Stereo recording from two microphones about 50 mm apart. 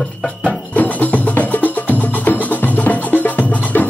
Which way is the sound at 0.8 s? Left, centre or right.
Left.